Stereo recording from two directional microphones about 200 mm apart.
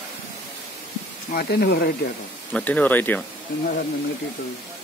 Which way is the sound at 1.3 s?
50° left (ahead or behind).